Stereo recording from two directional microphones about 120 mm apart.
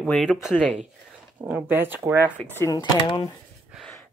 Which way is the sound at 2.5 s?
25° left (ahead or behind).